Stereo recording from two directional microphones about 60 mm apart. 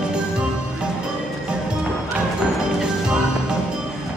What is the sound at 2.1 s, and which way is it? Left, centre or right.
Music, centre.